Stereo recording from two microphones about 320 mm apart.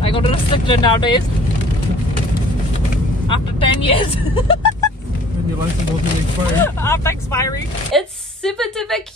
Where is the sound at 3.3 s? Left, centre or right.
Centre.